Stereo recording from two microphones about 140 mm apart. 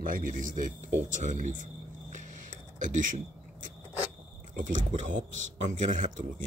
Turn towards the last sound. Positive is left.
turn(degrees=-65)  # may be behind; listen again after turning